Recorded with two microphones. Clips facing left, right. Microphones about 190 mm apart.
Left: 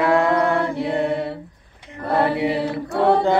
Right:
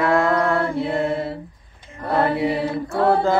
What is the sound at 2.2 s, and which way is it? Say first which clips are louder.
Chant: even; 20° left (ahead or behind).